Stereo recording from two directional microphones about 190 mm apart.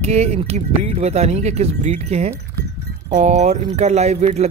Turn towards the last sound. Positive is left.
turn(degrees=-35)  # may be behind; listen again after turning